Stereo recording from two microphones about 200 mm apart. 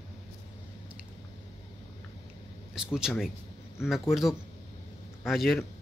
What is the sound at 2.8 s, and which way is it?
A man's voice, 5° right (ahead or behind).